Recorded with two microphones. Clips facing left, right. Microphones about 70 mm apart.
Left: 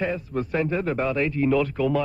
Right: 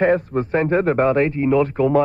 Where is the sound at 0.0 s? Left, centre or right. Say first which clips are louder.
Right 10 dB; right.